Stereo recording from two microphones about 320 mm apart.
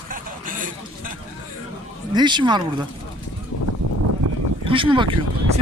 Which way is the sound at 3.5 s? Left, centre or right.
Left.